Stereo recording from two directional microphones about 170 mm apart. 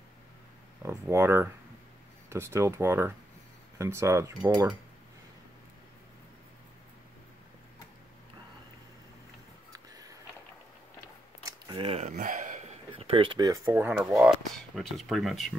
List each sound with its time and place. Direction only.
0.8 s speech: 15° right (ahead or behind)
9.7 s a sound: 20° right (ahead or behind)
11.6 s speech: 30° right (ahead or behind)
12.1 s a sound: 50° right (ahead or behind)
12.9 s speech: 30° right (ahead or behind)
13.7 s speech: 10° right (ahead or behind)